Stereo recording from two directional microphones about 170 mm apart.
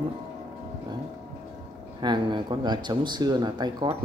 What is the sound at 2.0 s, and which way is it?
Speech, 25° right (ahead or behind).